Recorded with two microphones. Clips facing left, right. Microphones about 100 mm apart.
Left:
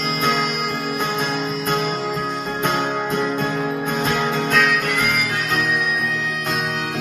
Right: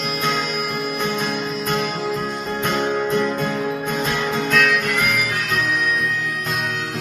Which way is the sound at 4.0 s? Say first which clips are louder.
Left 2 dB; 30° left (ahead or behind).